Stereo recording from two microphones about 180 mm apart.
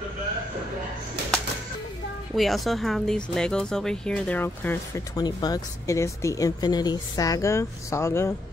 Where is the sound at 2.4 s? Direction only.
Centre (ahead or behind).